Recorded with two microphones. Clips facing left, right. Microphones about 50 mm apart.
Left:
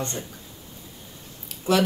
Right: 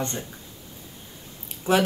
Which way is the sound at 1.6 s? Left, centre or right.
Right.